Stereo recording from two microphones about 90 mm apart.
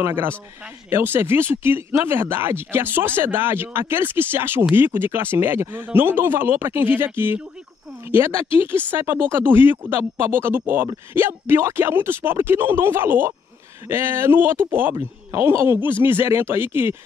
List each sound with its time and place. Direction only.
0.0 s speech: 25° right (ahead or behind)
8.5 s speech: 25° right (ahead or behind)